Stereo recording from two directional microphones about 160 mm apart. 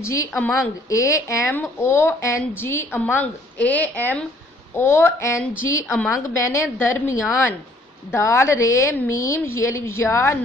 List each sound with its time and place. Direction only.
0.0 s a woman's voice: 15° left (ahead or behind)